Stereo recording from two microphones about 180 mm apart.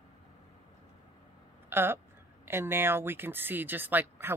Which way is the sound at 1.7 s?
10° right (ahead or behind).